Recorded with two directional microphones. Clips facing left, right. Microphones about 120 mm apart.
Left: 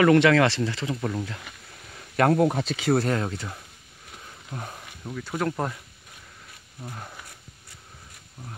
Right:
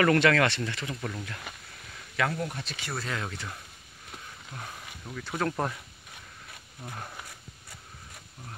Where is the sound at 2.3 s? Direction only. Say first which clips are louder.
Left 13 dB; 90° left.